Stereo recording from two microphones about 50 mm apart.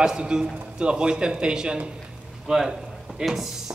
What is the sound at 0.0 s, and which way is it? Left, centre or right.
A man's voice, centre.